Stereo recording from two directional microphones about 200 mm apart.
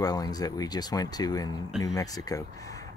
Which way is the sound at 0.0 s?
20° left (ahead or behind).